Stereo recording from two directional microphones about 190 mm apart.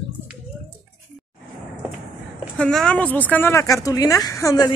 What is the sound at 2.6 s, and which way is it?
Speech, 5° left (ahead or behind).